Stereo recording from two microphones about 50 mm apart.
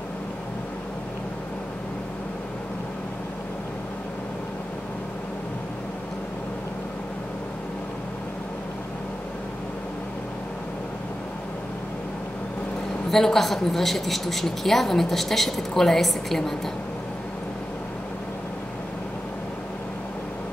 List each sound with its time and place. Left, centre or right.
13.1 s a man's voice: centre